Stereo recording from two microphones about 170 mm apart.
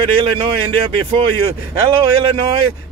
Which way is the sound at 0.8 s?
30° right (ahead or behind).